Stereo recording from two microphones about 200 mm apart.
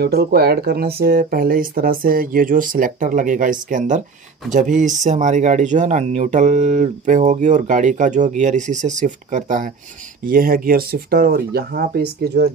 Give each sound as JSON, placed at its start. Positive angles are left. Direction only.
{"t": 0.0, "sound": "speech", "side_deg": -50}